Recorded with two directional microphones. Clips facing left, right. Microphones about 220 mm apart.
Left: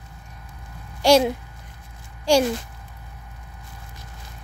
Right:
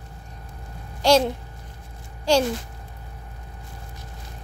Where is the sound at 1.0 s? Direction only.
10° left (ahead or behind).